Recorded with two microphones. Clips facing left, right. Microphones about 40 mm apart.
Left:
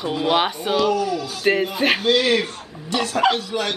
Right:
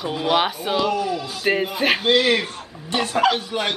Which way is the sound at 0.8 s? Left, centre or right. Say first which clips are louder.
Left 2 dB; centre.